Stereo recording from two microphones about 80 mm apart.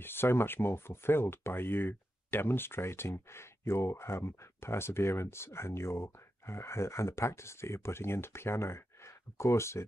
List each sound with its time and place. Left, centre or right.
0.0 s speech: left